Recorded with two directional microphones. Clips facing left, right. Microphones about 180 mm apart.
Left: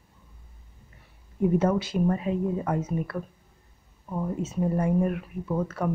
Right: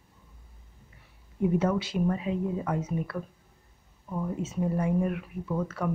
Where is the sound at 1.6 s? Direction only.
45° left (ahead or behind).